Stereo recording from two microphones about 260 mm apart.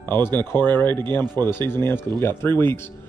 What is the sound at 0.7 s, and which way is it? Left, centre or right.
Speech, centre.